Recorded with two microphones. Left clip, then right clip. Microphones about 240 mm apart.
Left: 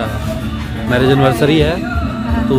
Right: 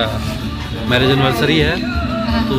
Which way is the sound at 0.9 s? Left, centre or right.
Centre.